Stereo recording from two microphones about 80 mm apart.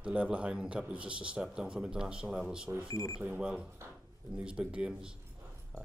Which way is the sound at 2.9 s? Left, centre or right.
Left.